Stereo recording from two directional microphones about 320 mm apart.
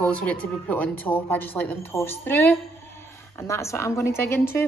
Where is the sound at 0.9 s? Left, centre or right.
Centre.